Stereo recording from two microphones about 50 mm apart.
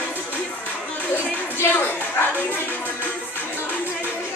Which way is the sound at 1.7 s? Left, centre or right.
Left.